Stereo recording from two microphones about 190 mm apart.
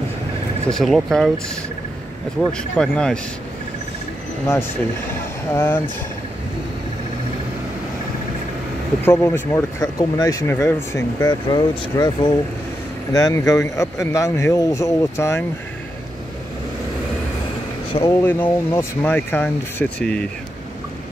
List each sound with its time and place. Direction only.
0.7 s speech: centre (ahead or behind)
2.5 s speech: 5° left (ahead or behind)
5.5 s speech: 10° left (ahead or behind)
9.0 s speech: 15° left (ahead or behind)
17.9 s speech: 15° left (ahead or behind)